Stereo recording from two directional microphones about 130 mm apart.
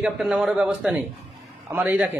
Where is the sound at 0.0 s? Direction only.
5° right (ahead or behind).